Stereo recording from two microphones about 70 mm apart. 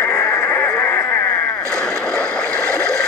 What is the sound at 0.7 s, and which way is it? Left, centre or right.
Dog, left.